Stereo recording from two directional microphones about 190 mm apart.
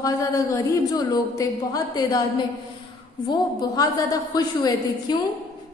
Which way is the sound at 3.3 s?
20° left (ahead or behind).